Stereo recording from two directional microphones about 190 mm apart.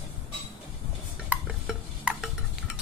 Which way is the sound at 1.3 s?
5° right (ahead or behind).